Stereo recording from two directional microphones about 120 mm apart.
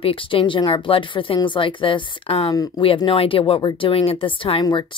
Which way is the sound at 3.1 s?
50° left (ahead or behind).